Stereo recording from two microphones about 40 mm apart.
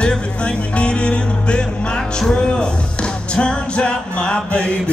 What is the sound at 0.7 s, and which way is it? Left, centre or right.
Music, left.